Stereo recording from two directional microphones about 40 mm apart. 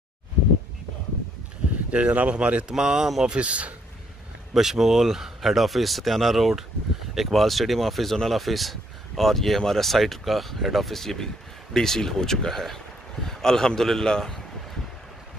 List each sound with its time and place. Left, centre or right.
1.9 s speech: right
2.7 s speech: centre
3.3 s speech: right
4.6 s a man's voice: centre